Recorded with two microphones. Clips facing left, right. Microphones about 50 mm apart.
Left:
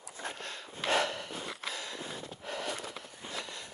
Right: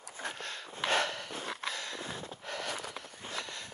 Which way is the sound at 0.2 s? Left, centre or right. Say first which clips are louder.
Right 1 dB; right.